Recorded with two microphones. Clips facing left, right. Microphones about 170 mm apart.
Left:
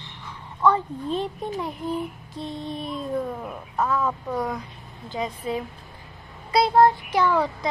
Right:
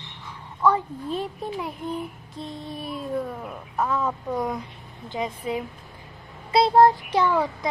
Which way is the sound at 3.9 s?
20° right (ahead or behind).